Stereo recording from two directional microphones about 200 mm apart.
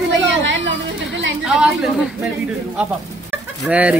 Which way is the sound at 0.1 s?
65° right (ahead or behind).